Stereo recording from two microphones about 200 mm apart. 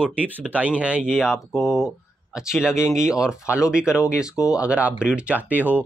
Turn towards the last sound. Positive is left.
turn(degrees=-10)  # may be behind; listen again after turning